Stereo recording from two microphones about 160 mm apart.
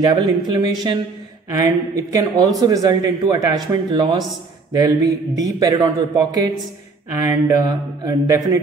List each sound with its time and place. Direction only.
0.0 s a man's voice: 25° right (ahead or behind)